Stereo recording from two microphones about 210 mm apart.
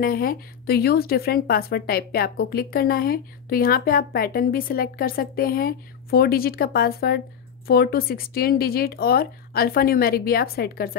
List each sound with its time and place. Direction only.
0.0 s speech: 45° left (ahead or behind)